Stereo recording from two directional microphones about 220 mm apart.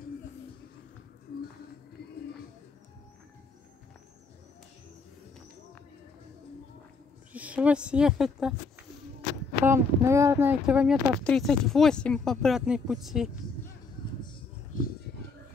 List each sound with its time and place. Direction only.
7.3 s speech: 5° right (ahead or behind)
9.7 s speech: 10° right (ahead or behind)
14.7 s a sound: 35° left (ahead or behind)